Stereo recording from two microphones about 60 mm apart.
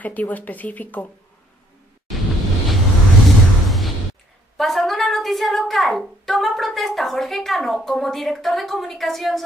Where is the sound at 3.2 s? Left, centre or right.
Centre.